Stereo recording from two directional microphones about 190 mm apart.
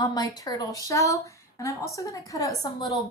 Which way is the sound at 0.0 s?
20° left (ahead or behind).